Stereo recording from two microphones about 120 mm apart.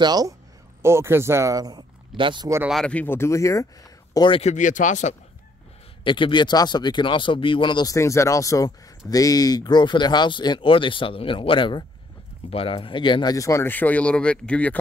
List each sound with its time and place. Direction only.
0.0 s speech: 35° right (ahead or behind)
0.8 s speech: 20° right (ahead or behind); by 2.4 s 40° right (ahead or behind)
2.7 s speech: 10° left (ahead or behind); by 3.6 s 25° left (ahead or behind)
4.1 s speech: 40° left (ahead or behind)
4.4 s speech: 80° left
6.0 s speech: 45° left (ahead or behind); by 14.8 s 10° left (ahead or behind)